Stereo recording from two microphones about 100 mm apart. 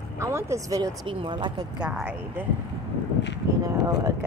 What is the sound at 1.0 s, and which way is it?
Speech, 55° right (ahead or behind).